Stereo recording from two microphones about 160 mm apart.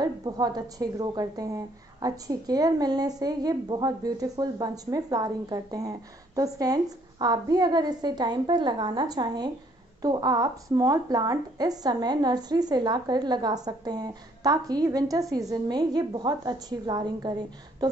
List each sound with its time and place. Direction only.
0.0 s a woman's voice: 25° right (ahead or behind)